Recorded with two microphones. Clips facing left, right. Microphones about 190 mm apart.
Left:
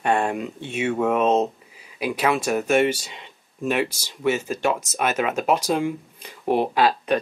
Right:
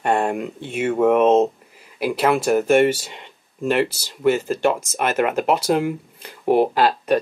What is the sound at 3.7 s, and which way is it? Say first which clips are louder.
Speech: right 4 dB; 5° right (ahead or behind).